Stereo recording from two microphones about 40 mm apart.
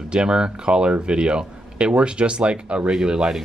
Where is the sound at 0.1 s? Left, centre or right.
Right.